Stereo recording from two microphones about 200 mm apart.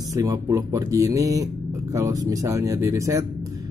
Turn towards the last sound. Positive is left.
turn(degrees=-15)  # may be behind; listen again after turning